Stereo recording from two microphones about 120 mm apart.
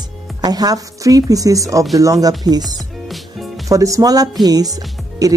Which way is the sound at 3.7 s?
25° right (ahead or behind).